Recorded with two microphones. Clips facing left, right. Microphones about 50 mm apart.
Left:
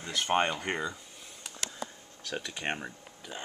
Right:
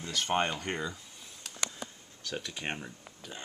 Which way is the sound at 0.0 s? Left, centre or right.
Centre.